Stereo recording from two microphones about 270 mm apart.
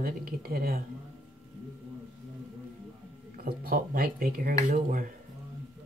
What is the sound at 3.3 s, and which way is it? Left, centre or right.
Speech, right.